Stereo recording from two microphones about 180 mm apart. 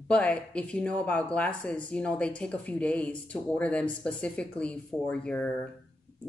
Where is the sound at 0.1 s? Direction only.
5° left (ahead or behind).